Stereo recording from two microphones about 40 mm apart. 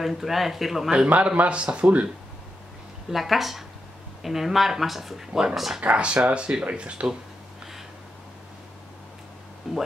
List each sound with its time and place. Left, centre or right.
0.0 s speech: centre
1.0 s speech: right
3.1 s speech: centre
5.8 s speech: right
9.6 s music: centre